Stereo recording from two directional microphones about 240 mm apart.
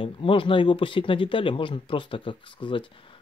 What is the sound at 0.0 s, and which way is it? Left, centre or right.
Speech, left.